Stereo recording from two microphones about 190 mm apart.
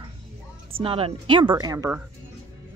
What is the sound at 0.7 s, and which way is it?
A woman's voice, 30° right (ahead or behind).